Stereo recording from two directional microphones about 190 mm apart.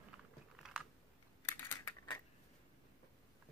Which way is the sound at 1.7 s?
15° left (ahead or behind).